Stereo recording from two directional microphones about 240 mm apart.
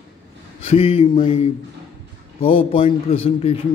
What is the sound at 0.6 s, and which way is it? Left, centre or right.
A man's voice, left.